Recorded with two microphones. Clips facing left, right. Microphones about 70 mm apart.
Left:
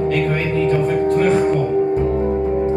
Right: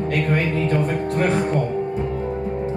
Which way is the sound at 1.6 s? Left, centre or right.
Left.